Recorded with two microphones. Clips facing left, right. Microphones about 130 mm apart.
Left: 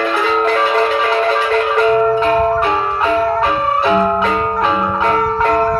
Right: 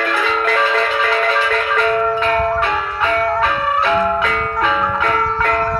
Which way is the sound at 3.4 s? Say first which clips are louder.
Left 2 dB; 25° left (ahead or behind).